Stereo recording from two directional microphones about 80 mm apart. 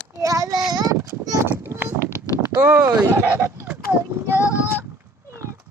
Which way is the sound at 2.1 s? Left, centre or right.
Left.